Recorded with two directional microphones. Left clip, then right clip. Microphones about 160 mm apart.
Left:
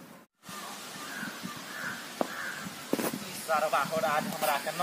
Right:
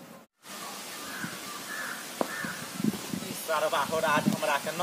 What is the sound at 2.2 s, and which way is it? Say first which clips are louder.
Crow: right 1 dB; centre (ahead or behind).